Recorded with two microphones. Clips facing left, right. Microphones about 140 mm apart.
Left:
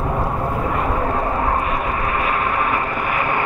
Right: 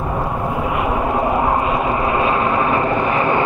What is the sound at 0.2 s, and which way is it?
Vehicle, 10° right (ahead or behind).